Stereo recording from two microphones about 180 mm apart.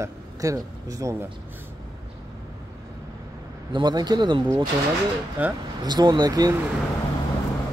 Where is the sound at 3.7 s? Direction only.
25° right (ahead or behind).